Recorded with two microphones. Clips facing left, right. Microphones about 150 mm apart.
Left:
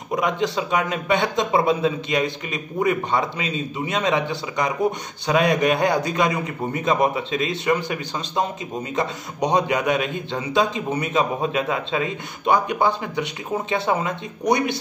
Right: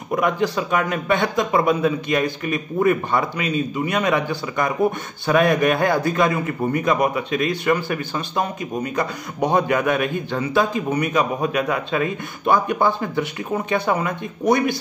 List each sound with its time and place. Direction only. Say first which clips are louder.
0.1 s a man's voice: right 2 dB; 20° left (ahead or behind)